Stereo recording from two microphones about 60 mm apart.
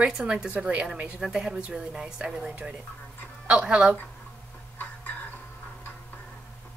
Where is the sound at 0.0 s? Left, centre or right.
Centre.